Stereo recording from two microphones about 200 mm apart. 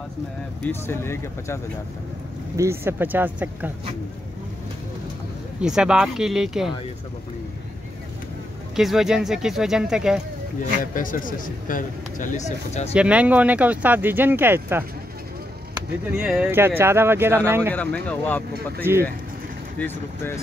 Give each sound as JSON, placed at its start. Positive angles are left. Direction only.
{"t": 0.7, "sound": "speech", "side_deg": 10}
{"t": 2.5, "sound": "speech", "side_deg": -15}
{"t": 5.6, "sound": "speech", "side_deg": -5}
{"t": 8.7, "sound": "speech", "side_deg": 0}
{"t": 11.0, "sound": "a man's voice", "side_deg": 45}
{"t": 12.9, "sound": "speech", "side_deg": -5}
{"t": 16.2, "sound": "speech", "side_deg": -5}
{"t": 17.7, "sound": "speech", "side_deg": 10}